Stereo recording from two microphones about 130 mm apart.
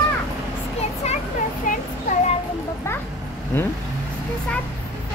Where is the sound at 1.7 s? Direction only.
90° left.